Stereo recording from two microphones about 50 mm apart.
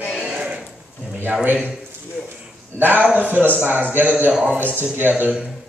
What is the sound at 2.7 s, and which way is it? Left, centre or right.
A man's voice, right.